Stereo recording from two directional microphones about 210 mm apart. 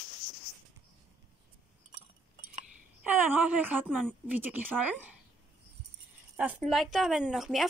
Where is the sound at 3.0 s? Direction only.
10° right (ahead or behind).